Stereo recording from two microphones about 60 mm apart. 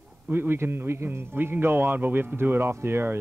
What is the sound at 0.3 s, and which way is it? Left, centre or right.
A man's voice, right.